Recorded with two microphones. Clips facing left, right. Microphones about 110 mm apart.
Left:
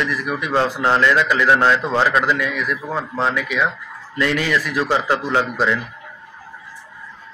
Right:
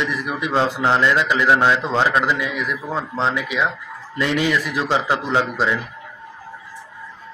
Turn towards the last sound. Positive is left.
turn(degrees=-15)  # may be behind; listen again after turning